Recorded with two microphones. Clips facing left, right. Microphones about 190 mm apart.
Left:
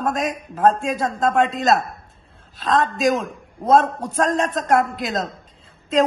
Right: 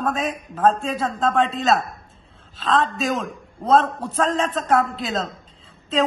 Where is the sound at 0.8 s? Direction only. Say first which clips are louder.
Left 2 dB; 15° left (ahead or behind).